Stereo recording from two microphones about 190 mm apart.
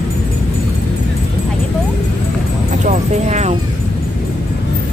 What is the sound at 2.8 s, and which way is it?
Speech, 35° right (ahead or behind).